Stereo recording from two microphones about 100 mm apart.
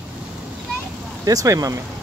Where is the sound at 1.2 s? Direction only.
35° right (ahead or behind).